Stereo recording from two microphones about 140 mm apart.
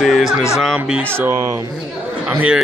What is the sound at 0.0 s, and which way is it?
Speech, centre (ahead or behind).